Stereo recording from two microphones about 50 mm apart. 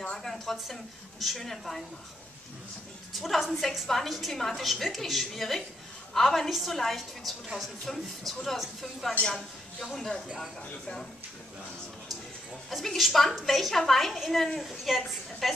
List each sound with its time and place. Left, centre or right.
0.1 s a sound: centre
1.2 s a woman's voice: centre
3.1 s a woman's voice: centre
7.8 s a woman's voice: centre
12.6 s a woman's voice: centre